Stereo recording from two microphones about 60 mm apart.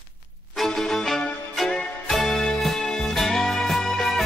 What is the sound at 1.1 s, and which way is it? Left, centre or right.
Music, centre.